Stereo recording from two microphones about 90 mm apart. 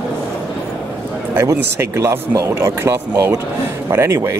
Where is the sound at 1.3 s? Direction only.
30° right (ahead or behind).